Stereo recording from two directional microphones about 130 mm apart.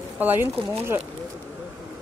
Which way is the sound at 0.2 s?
15° right (ahead or behind).